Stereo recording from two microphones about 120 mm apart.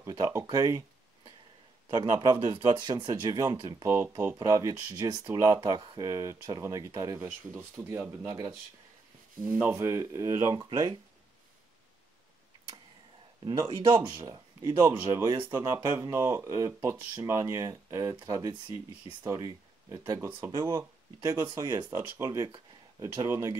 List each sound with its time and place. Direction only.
0.1 s speech: 25° right (ahead or behind)
1.9 s a man's voice: 35° right (ahead or behind)
9.6 s speech: 15° right (ahead or behind)
13.5 s speech: 25° right (ahead or behind)
20.5 s a man's voice: 40° right (ahead or behind)
21.2 s speech: 25° right (ahead or behind)